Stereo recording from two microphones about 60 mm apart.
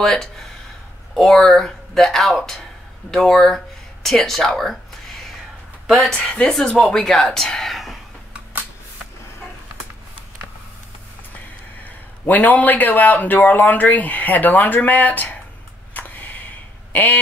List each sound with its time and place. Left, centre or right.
0.0 s speech: centre
6.1 s speech: centre
7.4 s whispering: centre
11.8 s a man's voice: left
15.9 s a sound: left